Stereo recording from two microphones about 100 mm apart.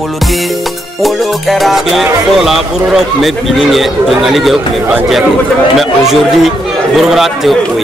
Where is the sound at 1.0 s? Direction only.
Centre (ahead or behind).